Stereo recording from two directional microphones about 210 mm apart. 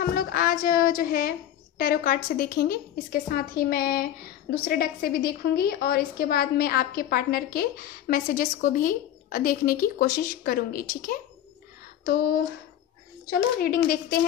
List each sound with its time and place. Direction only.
0.0 s a woman's voice: 45° left (ahead or behind)
12.0 s a sound: 45° left (ahead or behind)
13.3 s a woman's voice: 45° left (ahead or behind)